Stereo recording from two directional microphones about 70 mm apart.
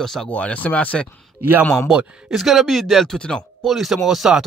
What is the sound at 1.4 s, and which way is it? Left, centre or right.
Speech, right.